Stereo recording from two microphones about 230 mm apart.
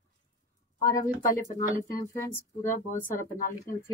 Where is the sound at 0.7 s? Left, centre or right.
Centre.